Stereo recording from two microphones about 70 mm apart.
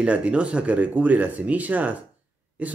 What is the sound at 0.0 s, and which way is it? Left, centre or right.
Speech, centre.